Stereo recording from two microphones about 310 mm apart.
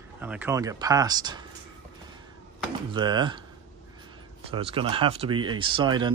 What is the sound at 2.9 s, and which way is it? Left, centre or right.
Speech, centre.